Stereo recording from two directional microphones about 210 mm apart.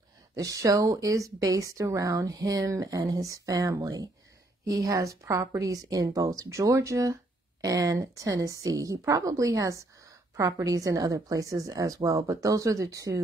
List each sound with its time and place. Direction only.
0.4 s speech: 15° right (ahead or behind)